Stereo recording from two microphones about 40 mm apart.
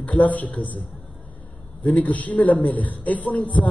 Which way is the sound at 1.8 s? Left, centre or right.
Left.